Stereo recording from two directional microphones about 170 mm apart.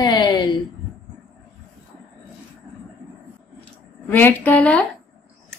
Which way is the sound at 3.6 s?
10° left (ahead or behind).